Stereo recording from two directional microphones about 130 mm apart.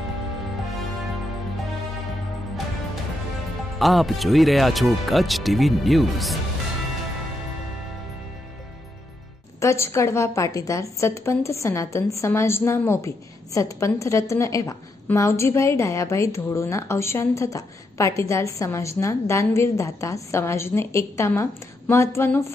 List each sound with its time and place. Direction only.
3.8 s speech: centre (ahead or behind)
9.6 s a woman's voice: 20° left (ahead or behind)